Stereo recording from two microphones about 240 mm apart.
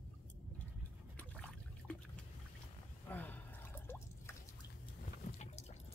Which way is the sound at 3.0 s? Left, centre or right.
Centre.